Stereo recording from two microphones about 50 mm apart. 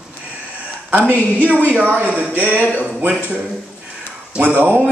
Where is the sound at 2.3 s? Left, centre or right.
Right.